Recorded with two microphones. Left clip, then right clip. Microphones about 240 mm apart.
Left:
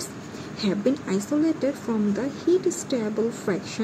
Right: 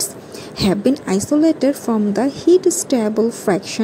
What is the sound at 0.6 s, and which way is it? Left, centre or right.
A woman's voice, right.